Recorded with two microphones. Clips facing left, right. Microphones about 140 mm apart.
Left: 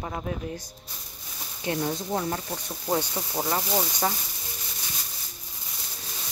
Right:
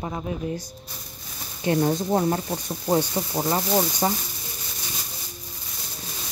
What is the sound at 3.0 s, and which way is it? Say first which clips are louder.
Speech: right 5 dB; 10° right (ahead or behind).